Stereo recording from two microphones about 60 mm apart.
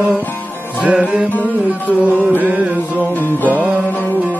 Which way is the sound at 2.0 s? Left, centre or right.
Right.